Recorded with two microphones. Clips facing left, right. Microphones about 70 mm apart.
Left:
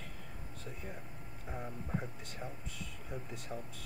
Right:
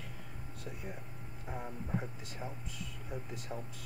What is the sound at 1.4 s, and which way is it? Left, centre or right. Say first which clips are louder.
Speech: right 2 dB; centre.